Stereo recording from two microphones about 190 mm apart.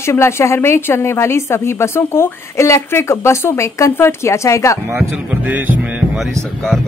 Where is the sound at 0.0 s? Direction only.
15° left (ahead or behind).